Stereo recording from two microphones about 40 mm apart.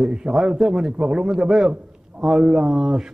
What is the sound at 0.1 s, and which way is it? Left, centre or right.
A man's voice, centre.